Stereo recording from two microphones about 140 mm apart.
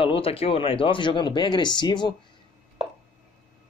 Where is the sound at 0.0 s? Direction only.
40° left (ahead or behind).